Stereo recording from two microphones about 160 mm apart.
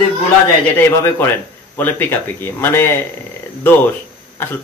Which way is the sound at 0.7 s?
15° left (ahead or behind).